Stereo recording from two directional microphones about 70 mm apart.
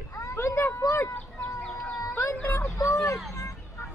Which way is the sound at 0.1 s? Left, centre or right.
Left.